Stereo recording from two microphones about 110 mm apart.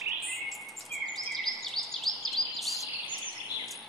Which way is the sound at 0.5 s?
Centre (ahead or behind).